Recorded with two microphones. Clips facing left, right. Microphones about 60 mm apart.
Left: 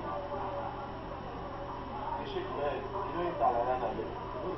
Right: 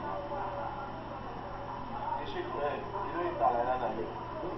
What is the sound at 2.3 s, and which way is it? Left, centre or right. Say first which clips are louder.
Speech: even; right.